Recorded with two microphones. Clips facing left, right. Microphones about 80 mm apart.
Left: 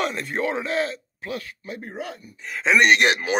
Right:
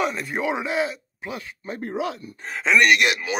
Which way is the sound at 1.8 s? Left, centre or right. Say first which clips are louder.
Right 8 dB; right.